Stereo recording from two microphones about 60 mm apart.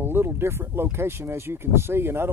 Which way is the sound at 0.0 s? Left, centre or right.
Right.